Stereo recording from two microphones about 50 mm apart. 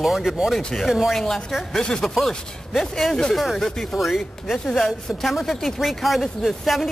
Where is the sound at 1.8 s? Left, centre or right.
Centre.